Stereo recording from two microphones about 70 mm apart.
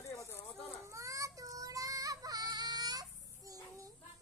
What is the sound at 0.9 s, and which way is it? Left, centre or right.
Child singing, right.